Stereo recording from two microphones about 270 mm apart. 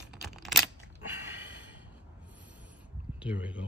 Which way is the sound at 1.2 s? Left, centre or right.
Centre.